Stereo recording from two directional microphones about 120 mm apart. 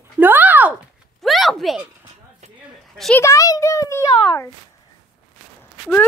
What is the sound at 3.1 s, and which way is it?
Speech, 25° left (ahead or behind).